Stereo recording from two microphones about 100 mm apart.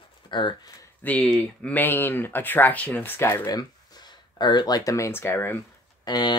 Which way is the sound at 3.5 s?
45° left (ahead or behind).